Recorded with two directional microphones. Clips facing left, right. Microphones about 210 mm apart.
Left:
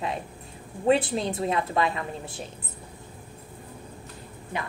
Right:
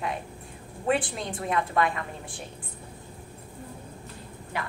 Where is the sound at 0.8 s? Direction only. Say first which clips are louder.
Left 5 dB; 25° left (ahead or behind).